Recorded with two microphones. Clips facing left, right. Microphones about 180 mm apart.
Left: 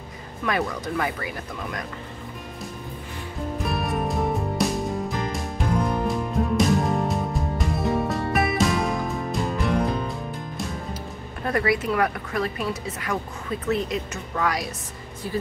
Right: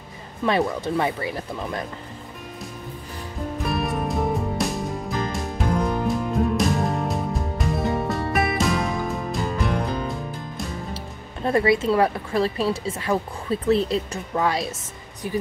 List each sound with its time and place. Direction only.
0.5 s a woman's voice: 25° right (ahead or behind)
3.6 s music: centre (ahead or behind)
11.4 s a woman's voice: 25° right (ahead or behind)